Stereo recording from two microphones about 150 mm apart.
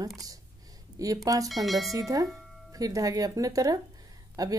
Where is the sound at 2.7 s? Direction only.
25° right (ahead or behind).